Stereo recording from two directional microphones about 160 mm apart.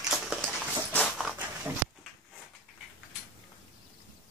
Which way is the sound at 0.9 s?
5° left (ahead or behind).